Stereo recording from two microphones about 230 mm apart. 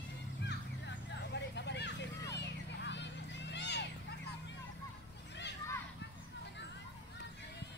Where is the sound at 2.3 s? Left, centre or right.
Left.